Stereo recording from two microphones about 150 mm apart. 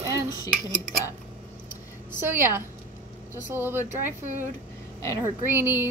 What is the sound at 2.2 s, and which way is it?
Speech, 15° right (ahead or behind).